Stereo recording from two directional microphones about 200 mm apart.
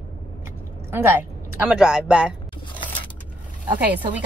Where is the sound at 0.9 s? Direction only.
10° right (ahead or behind).